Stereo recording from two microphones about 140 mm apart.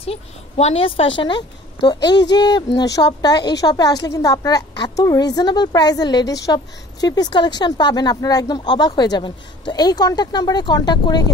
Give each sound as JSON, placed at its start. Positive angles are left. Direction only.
{"t": 0.0, "sound": "a woman's voice", "side_deg": 45}